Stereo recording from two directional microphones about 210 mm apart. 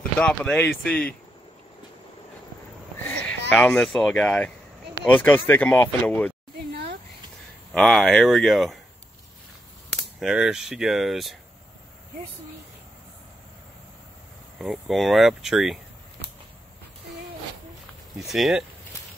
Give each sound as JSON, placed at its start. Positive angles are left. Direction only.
{"t": 0.2, "sound": "speech", "side_deg": 5}
{"t": 3.1, "sound": "speech", "side_deg": 5}
{"t": 6.7, "sound": "a sound", "side_deg": -50}
{"t": 7.7, "sound": "speech", "side_deg": 0}
{"t": 10.2, "sound": "speech", "side_deg": -5}
{"t": 14.6, "sound": "speech", "side_deg": 0}
{"t": 18.2, "sound": "speech", "side_deg": 0}